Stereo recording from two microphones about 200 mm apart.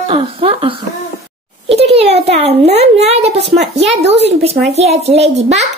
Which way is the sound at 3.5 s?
60° right (ahead or behind).